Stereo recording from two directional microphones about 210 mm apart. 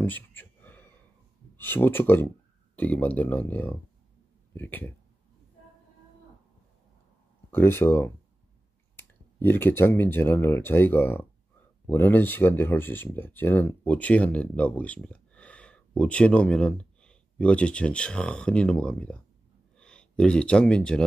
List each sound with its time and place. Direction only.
0.0 s a sound: 10° left (ahead or behind)
1.6 s speech: 10° left (ahead or behind)
7.5 s speech: 10° left (ahead or behind)